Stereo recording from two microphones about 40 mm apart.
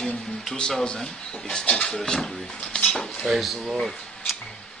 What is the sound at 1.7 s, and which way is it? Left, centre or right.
A man's voice, centre.